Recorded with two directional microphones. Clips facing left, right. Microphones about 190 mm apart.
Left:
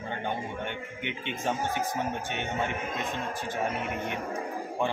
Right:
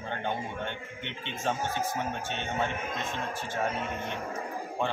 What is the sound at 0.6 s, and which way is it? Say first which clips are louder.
A man's voice: left 2 dB; 15° left (ahead or behind).